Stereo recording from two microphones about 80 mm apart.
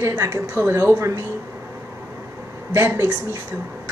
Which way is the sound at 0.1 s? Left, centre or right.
Right.